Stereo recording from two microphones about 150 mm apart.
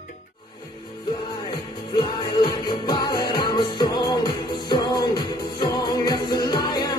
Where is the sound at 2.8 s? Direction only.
30° left (ahead or behind).